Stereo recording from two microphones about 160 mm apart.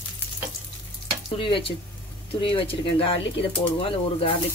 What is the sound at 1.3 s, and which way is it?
Speech, 35° left (ahead or behind).